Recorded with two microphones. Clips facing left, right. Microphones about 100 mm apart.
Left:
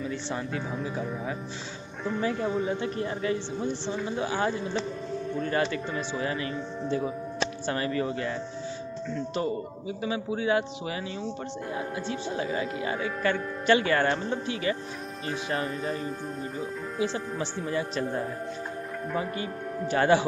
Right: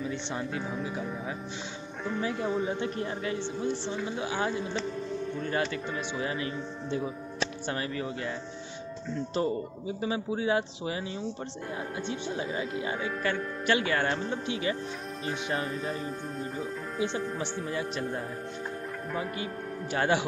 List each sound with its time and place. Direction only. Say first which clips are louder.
0.4 s speech: left 1 dB; 10° right (ahead or behind)
2.0 s speech: left 2 dB; centre (ahead or behind); by 7.0 s 15° right (ahead or behind)
7.7 s speech: left 5 dB; 5° right (ahead or behind)
9.3 s a man's voice: right 2 dB; 30° right (ahead or behind)
12.1 s speech: left 3 dB; 5° right (ahead or behind)
14.4 s a man's voice: left 2 dB; 20° right (ahead or behind)
15.5 s speech: left 3 dB; centre (ahead or behind)
17.6 s speech: left 6 dB; 5° right (ahead or behind)